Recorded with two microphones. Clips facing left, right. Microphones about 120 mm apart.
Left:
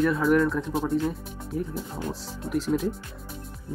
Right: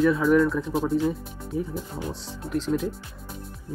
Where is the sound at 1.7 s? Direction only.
5° left (ahead or behind).